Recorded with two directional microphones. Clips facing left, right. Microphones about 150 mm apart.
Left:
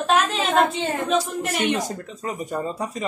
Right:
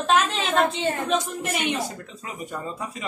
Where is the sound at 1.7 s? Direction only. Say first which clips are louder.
Left 3 dB; 40° left (ahead or behind).